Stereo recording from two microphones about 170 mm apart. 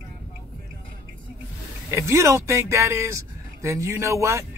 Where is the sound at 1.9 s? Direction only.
15° right (ahead or behind).